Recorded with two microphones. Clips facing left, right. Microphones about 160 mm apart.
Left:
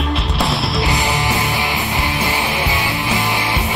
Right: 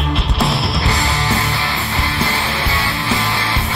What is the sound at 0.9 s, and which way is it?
Music, 20° left (ahead or behind).